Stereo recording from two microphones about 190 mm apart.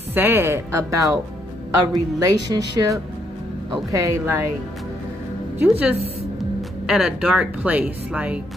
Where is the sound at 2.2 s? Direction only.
20° right (ahead or behind).